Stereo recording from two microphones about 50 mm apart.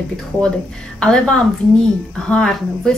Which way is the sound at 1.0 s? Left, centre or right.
Centre.